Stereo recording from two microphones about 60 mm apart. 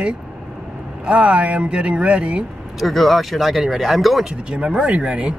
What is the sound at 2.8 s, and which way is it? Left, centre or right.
Speech, centre.